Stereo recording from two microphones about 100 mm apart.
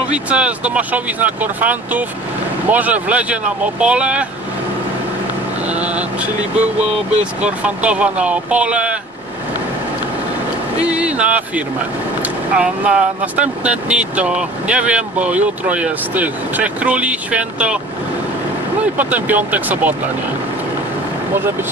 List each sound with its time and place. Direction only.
0.1 s speech: 10° right (ahead or behind)
5.7 s a sound: 15° right (ahead or behind)
7.4 s speech: 10° right (ahead or behind)
10.9 s speech: 10° right (ahead or behind)
18.9 s speech: 15° right (ahead or behind)